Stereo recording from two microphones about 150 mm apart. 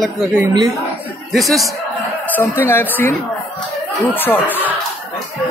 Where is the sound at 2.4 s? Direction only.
15° left (ahead or behind).